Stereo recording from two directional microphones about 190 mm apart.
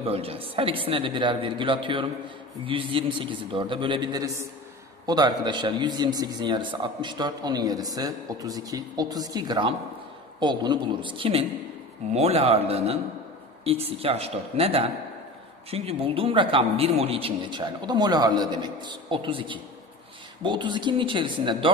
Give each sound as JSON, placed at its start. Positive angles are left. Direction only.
{"t": 0.0, "sound": "a man's voice", "side_deg": -30}